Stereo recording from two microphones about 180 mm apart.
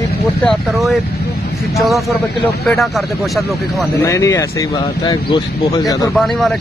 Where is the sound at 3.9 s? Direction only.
15° left (ahead or behind).